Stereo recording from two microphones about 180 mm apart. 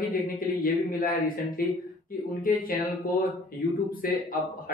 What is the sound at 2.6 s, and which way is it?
A man's voice, 50° left (ahead or behind).